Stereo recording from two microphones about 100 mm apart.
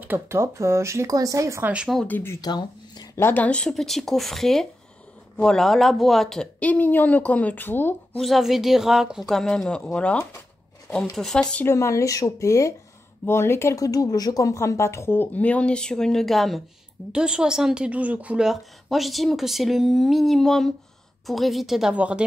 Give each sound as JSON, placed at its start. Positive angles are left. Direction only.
{"t": 0.0, "sound": "speech", "side_deg": -20}
{"t": 1.6, "sound": "speech", "side_deg": -10}
{"t": 2.0, "sound": "speech", "side_deg": 20}
{"t": 2.4, "sound": "a sound", "side_deg": 45}
{"t": 3.2, "sound": "a woman's voice", "side_deg": 20}
{"t": 8.2, "sound": "a woman's voice", "side_deg": 0}
{"t": 9.4, "sound": "speech", "side_deg": 5}
{"t": 11.6, "sound": "a woman's voice", "side_deg": 30}